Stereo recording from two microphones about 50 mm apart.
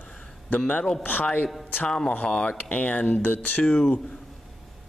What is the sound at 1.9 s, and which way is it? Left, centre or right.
Speech, centre.